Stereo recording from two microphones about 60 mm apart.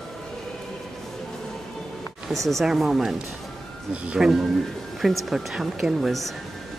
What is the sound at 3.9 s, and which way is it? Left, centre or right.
Speech, centre.